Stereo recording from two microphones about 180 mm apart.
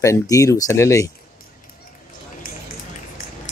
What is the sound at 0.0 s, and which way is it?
Speech, 15° left (ahead or behind).